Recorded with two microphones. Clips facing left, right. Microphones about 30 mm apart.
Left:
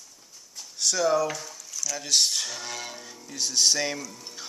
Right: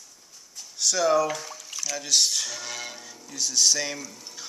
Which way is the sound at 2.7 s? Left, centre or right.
Centre.